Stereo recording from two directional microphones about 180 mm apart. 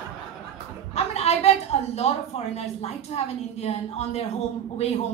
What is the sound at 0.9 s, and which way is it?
A woman's voice, 35° left (ahead or behind).